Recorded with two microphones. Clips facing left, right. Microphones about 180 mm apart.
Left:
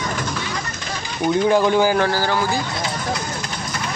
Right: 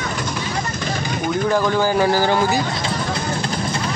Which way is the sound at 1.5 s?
15° left (ahead or behind).